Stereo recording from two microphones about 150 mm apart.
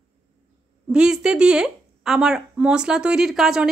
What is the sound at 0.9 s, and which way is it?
A woman's voice, 5° right (ahead or behind).